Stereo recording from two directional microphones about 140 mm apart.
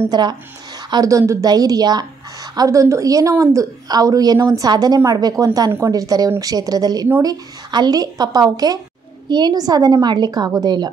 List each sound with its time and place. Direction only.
0.1 s a woman's voice: 30° right (ahead or behind)